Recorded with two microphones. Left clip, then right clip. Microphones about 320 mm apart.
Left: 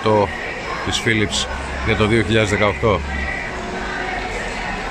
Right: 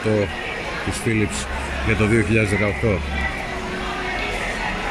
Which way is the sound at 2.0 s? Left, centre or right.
Centre.